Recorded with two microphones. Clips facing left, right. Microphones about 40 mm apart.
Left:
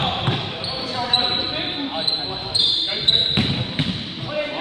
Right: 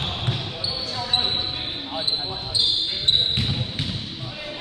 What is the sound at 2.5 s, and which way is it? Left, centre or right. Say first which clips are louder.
Basketball bounce: left 2 dB; left.